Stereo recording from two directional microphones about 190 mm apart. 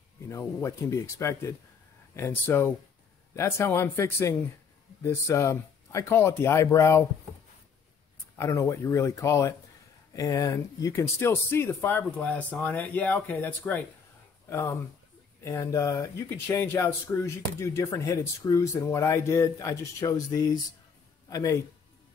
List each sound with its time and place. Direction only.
0.3 s speech: 15° left (ahead or behind)
8.4 s a man's voice: 15° left (ahead or behind)